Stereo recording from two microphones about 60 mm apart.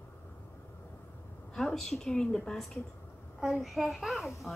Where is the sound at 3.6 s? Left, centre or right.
Centre.